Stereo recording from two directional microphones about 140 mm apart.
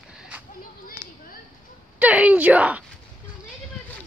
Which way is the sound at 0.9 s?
65° left (ahead or behind).